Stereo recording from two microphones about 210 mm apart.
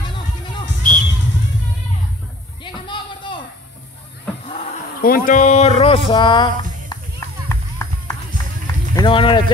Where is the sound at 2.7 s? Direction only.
25° left (ahead or behind).